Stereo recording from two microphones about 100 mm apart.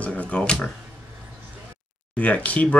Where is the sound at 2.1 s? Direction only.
15° left (ahead or behind).